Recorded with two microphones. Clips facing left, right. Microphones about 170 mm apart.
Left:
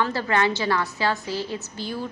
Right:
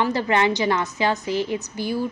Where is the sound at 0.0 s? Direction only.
20° right (ahead or behind).